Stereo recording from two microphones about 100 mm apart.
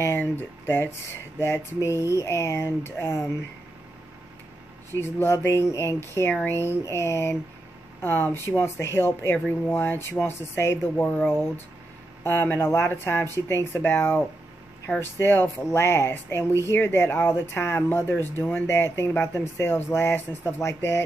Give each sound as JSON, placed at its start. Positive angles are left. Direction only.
{"t": 0.0, "sound": "speech", "side_deg": 20}
{"t": 5.0, "sound": "speech", "side_deg": 25}